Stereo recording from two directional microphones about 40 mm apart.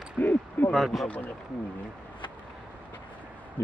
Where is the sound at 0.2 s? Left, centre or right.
Left.